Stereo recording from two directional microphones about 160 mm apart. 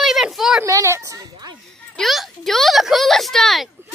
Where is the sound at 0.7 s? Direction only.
20° right (ahead or behind).